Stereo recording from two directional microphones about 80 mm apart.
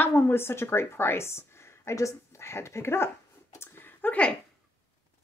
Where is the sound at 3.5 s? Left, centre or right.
Left.